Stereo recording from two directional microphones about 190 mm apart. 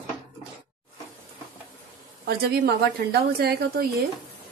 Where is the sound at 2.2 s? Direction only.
55° right (ahead or behind).